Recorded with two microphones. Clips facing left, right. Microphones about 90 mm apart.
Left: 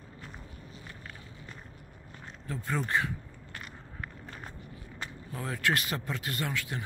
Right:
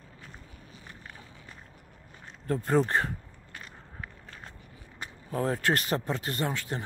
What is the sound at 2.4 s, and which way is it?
Speech, 45° right (ahead or behind).